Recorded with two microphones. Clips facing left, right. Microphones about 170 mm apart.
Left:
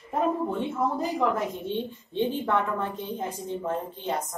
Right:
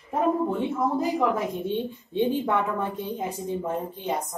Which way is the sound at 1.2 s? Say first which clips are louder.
Right 2 dB; 10° right (ahead or behind).